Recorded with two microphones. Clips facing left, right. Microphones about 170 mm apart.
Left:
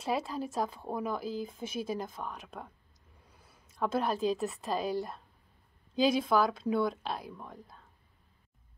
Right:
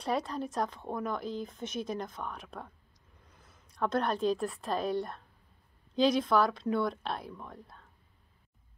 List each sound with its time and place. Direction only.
0.0 s a woman's voice: 5° left (ahead or behind)